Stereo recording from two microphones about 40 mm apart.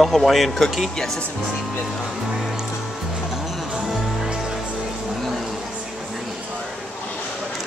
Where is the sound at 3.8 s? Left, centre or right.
Centre.